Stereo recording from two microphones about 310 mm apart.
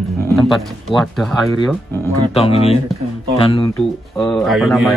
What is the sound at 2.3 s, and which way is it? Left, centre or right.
Speech, centre.